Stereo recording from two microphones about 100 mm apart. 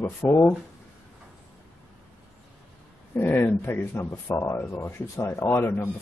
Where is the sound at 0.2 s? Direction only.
20° left (ahead or behind).